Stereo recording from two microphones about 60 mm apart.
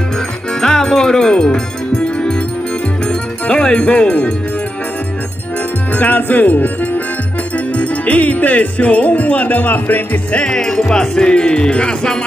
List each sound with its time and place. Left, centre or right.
0.6 s music: centre
5.9 s music: left
7.5 s speech: left
10.3 s music: centre